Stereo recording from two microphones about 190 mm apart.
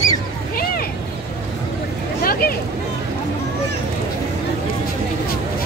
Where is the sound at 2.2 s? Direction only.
50° left (ahead or behind).